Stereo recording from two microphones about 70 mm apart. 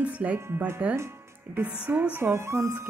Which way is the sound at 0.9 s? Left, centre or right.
Right.